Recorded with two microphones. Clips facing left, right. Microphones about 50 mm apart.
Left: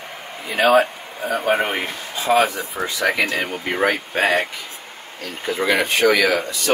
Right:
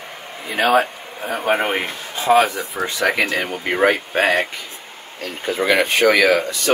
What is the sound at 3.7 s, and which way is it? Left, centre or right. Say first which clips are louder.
Speech: right 4 dB; right.